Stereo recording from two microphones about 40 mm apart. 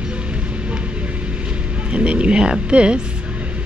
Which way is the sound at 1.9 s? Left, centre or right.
Right.